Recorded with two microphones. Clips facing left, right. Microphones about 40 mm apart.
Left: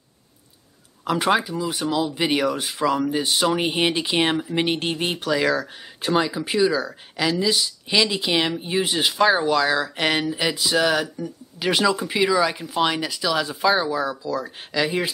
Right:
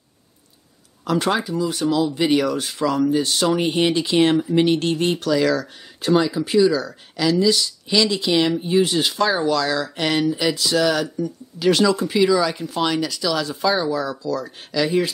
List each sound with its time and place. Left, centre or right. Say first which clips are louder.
1.0 s speech: even; centre